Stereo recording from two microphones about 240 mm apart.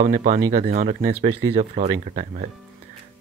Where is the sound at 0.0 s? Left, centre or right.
Right.